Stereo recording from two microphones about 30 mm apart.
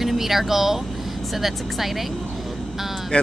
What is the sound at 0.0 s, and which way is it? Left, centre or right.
Speech, centre.